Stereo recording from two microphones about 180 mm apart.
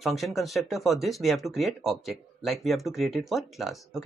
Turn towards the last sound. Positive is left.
turn(degrees=0)  # may be behind; listen again after turning